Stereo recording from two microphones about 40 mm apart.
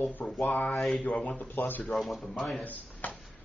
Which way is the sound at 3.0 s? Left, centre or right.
Left.